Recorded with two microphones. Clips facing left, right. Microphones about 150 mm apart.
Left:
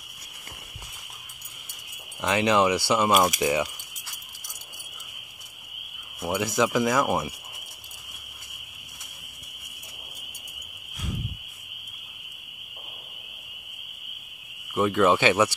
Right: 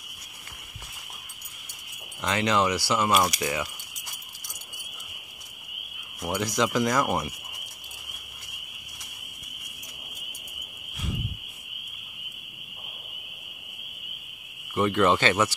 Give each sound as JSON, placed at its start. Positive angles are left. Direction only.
{"t": 2.2, "sound": "speech", "side_deg": 15}
{"t": 6.2, "sound": "speech", "side_deg": 5}
{"t": 14.7, "sound": "speech", "side_deg": 5}